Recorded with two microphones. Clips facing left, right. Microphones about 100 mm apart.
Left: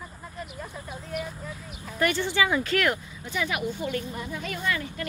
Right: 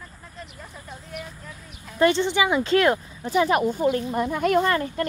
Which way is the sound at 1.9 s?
25° right (ahead or behind).